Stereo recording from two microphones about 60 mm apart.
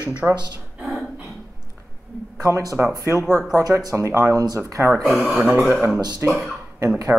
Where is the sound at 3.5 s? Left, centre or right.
Right.